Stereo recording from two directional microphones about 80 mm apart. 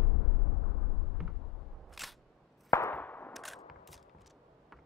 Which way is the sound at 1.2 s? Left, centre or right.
Centre.